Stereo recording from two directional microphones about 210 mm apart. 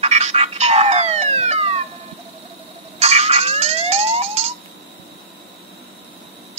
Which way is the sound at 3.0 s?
30° right (ahead or behind).